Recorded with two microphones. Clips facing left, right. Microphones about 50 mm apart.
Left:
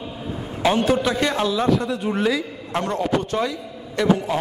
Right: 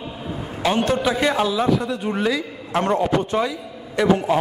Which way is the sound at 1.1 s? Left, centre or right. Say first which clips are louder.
Right 2 dB; centre.